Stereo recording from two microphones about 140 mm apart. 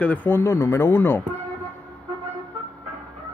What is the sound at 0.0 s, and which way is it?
A man's voice, 10° left (ahead or behind).